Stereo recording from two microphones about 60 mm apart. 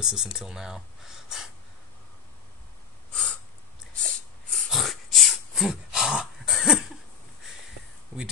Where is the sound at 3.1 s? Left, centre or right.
Centre.